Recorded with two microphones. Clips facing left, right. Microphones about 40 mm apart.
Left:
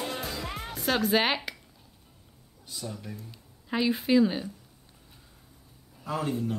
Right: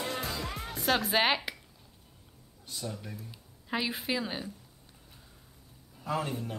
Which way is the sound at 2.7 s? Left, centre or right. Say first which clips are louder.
Left 1 dB; centre.